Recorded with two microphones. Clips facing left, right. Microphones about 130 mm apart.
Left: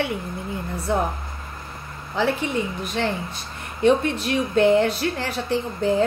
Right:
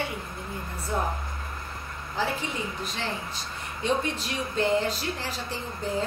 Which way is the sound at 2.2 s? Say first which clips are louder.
Left 7 dB; 75° left (ahead or behind).